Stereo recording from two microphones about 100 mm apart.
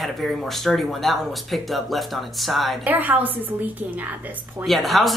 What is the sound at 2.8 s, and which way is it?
A woman's voice, 20° right (ahead or behind).